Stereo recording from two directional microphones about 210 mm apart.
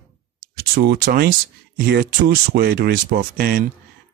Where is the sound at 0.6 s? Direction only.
45° right (ahead or behind).